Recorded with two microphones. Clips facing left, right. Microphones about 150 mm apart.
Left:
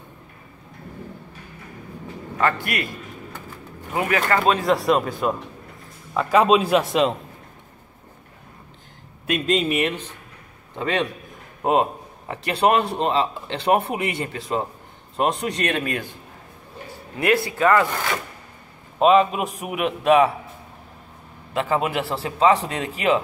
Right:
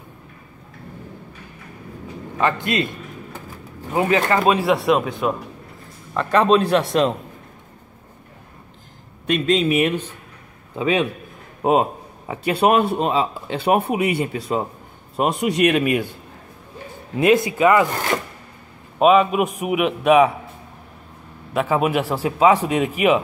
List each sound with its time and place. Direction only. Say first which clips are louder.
2.3 s speech: right 3 dB; 20° right (ahead or behind)
3.9 s speech: right 3 dB; 25° right (ahead or behind)
4.6 s a man's voice: right 2 dB; centre (ahead or behind)
9.2 s a man's voice: right 3 dB; 5° left (ahead or behind)
10.8 s a man's voice: right 4 dB; 10° right (ahead or behind)
17.2 s a man's voice: right 4 dB; 20° right (ahead or behind)
18.9 s a man's voice: right 2 dB; 5° right (ahead or behind)
21.5 s a man's voice: right 3 dB; 10° right (ahead or behind)